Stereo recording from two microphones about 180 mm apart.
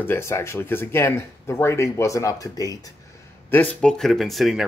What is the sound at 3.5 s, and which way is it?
Speech, 10° left (ahead or behind).